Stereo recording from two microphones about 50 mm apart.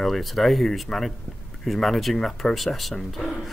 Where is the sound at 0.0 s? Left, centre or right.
Centre.